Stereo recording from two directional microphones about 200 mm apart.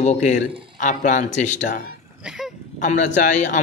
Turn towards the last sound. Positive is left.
turn(degrees=40)  # may be behind; listen again after turning